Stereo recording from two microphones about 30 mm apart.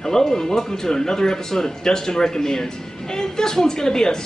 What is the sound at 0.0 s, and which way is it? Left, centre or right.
Speech, centre.